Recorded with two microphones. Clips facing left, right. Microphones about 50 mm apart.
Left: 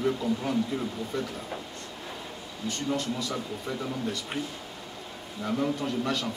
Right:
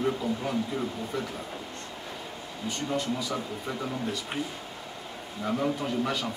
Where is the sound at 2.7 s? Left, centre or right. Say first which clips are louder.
Even; centre.